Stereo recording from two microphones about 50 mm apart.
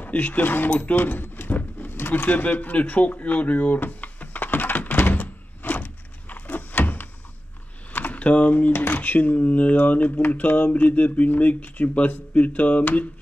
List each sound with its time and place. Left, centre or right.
0.0 s drawer open or close: left
7.9 s a sound: left
8.7 s speech: left